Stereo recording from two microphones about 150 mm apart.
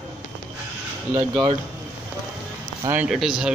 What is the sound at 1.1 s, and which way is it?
Speech, 25° right (ahead or behind).